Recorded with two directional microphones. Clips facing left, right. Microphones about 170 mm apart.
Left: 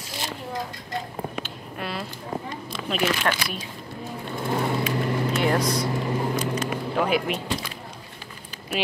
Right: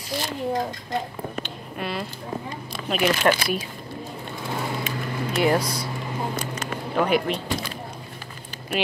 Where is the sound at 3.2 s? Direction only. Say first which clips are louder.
Right 6 dB; 15° right (ahead or behind).